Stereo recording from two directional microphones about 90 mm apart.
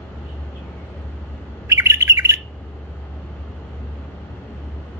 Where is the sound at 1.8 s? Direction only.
35° right (ahead or behind).